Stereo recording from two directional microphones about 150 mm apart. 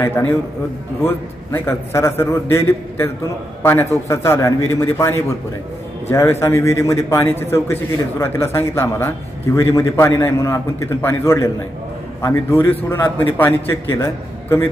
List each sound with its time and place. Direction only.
0.0 s a man's voice: 15° left (ahead or behind)